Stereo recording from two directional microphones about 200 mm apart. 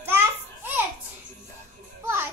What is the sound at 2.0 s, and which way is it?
Children playing, 10° right (ahead or behind).